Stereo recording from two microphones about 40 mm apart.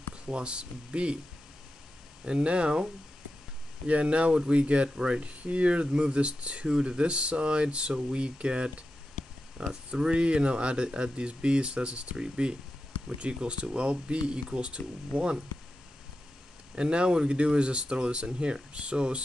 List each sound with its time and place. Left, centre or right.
0.1 s speech: right
2.2 s speech: right
5.2 s speech: right
9.8 s speech: right
16.7 s speech: right